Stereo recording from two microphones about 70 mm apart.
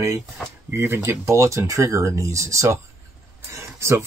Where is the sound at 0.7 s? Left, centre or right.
Right.